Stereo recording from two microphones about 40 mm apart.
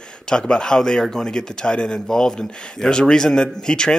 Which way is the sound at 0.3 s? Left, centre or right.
Left.